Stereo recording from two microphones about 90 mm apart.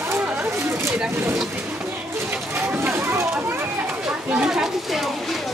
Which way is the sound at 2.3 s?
20° right (ahead or behind).